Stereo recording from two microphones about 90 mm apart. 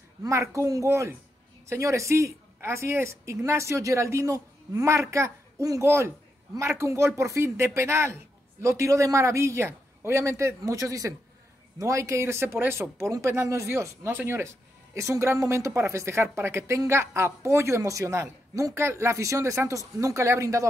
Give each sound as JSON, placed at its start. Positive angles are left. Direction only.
{"t": 0.2, "sound": "speech", "side_deg": -35}